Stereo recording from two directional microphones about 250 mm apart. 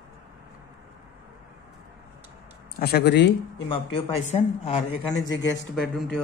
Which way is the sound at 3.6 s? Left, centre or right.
Left.